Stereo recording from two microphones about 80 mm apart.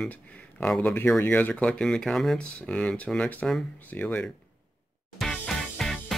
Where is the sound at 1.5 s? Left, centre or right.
Centre.